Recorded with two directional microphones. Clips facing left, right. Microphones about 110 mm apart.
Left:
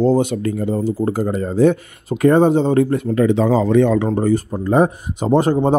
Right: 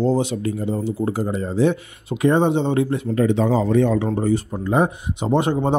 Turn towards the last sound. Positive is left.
turn(degrees=35)  # may be behind; listen again after turning